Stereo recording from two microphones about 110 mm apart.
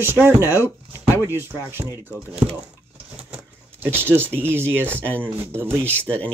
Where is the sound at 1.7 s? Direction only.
20° right (ahead or behind).